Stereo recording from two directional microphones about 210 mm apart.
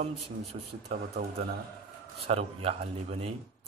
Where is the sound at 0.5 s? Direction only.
40° right (ahead or behind).